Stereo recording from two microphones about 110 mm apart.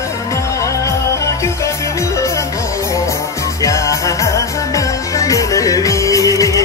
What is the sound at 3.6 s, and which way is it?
Music, 30° left (ahead or behind).